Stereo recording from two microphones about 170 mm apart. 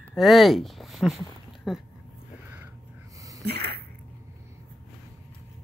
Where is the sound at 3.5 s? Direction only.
70° right (ahead or behind).